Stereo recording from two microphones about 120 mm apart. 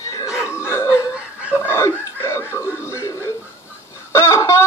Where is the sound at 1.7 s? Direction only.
20° left (ahead or behind).